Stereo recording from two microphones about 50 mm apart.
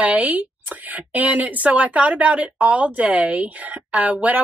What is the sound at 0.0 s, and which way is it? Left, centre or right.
A woman's voice, right.